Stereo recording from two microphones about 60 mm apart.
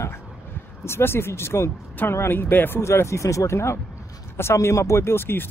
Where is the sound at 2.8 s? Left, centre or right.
Left.